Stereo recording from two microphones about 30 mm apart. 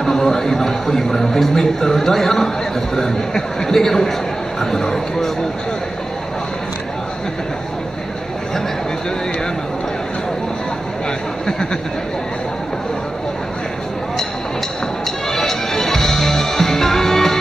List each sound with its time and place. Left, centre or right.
0.0 s a sound: centre
0.8 s a man's voice: centre
15.3 s music: centre